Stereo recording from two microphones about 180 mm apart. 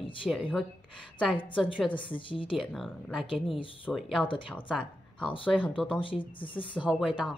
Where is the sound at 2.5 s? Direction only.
Centre (ahead or behind).